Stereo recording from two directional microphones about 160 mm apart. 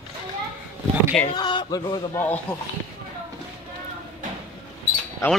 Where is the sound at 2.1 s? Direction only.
10° left (ahead or behind).